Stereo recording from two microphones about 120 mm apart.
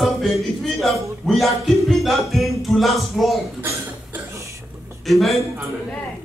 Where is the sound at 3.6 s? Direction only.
25° right (ahead or behind).